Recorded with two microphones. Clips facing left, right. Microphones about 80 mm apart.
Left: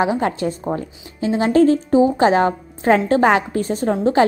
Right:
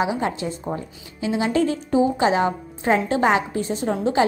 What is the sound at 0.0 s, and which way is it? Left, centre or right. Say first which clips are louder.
Speech: left 4 dB; left.